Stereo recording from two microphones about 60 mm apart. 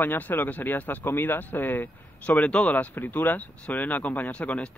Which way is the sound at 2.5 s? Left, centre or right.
Centre.